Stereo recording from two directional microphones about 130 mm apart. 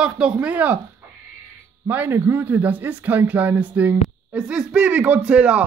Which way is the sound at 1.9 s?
15° right (ahead or behind).